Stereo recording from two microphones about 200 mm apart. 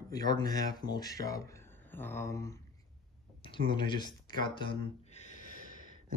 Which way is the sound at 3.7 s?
25° left (ahead or behind).